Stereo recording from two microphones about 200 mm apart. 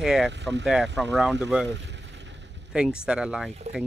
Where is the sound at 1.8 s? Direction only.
60° right (ahead or behind).